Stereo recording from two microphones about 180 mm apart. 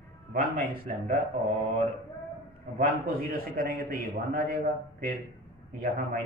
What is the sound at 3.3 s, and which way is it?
Speech, 55° right (ahead or behind).